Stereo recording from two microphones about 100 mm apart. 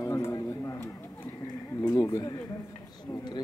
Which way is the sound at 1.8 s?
40° left (ahead or behind).